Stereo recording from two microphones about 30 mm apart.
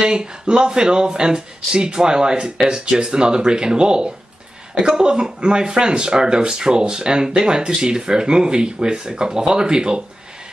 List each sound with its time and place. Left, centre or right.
0.0 s speech: right